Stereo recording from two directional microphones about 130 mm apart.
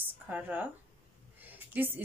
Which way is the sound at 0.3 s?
10° right (ahead or behind).